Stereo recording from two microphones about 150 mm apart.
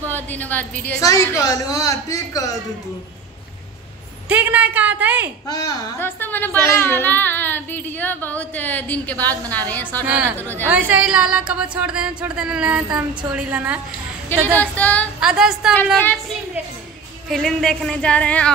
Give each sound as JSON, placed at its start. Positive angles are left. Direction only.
{"t": 0.0, "sound": "a woman's voice", "side_deg": 10}
{"t": 4.3, "sound": "a woman's voice", "side_deg": -10}
{"t": 5.5, "sound": "speech", "side_deg": 25}
{"t": 10.0, "sound": "speech", "side_deg": -10}
{"t": 10.3, "sound": "speech", "side_deg": 10}
{"t": 10.7, "sound": "speech", "side_deg": -10}
{"t": 14.4, "sound": "speech", "side_deg": 10}
{"t": 15.1, "sound": "speech", "side_deg": -5}
{"t": 17.3, "sound": "speech", "side_deg": 0}